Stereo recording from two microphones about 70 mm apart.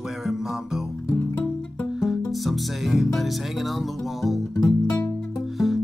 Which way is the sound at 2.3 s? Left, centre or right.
Centre.